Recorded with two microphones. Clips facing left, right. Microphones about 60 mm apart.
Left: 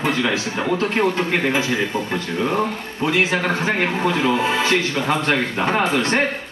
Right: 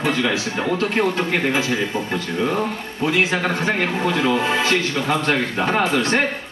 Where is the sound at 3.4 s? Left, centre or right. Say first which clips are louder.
Left 1 dB; centre.